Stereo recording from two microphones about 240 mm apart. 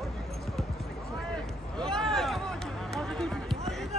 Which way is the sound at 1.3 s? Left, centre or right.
Centre.